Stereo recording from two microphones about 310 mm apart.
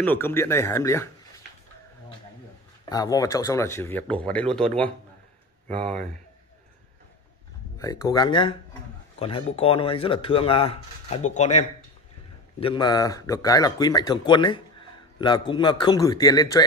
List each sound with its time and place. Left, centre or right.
0.0 s speech: centre
2.8 s speech: centre
7.8 s speech: centre